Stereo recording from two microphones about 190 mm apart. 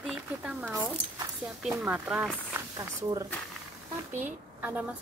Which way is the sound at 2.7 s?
20° right (ahead or behind).